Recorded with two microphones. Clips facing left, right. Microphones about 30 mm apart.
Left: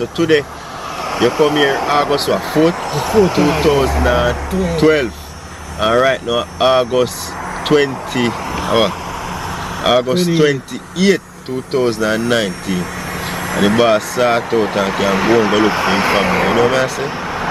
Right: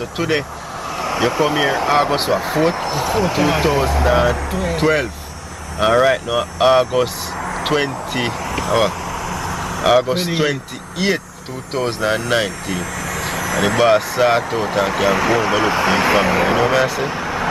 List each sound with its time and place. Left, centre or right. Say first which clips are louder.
0.0 s speech: left 6 dB; centre
8.5 s speech: left 2 dB; centre
9.8 s speech: left 1 dB; centre
10.1 s speech: left 5 dB; centre
13.2 s vehicle: even; left
13.5 s speech: left 2 dB; centre
14.6 s speech: left 2 dB; centre
17.0 s vehicle: even; centre